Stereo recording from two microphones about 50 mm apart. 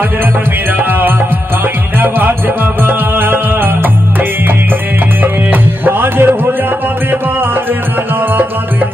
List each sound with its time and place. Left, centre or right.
0.7 s music: right
5.2 s music: right